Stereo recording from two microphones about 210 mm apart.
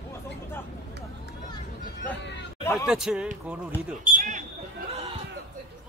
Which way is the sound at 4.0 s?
35° right (ahead or behind).